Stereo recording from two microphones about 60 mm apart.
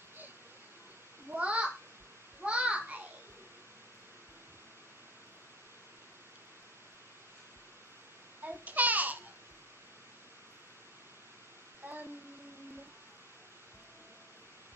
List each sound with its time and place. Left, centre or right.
1.3 s a sound: right
8.5 s babbling: right
11.8 s child singing: right